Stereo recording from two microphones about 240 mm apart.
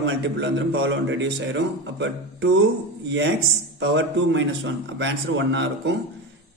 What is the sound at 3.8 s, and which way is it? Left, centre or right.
A man's voice, right.